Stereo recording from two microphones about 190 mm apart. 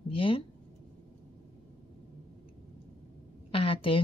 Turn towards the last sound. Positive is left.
turn(degrees=30)  # may be behind; listen again after turning